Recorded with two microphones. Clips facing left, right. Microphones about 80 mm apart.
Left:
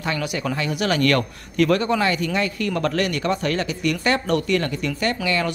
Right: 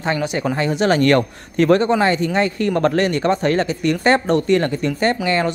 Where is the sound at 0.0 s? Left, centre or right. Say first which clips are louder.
Right 5 dB; right.